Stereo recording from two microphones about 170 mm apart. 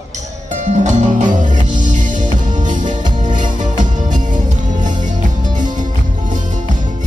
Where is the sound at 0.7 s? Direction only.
45° right (ahead or behind).